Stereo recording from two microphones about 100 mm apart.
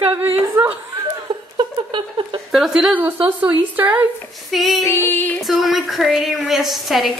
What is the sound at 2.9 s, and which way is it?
Speech, 15° right (ahead or behind).